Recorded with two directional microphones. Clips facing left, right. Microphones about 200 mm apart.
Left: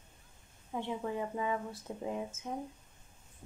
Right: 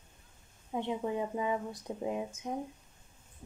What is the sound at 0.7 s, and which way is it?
Speech, 20° right (ahead or behind).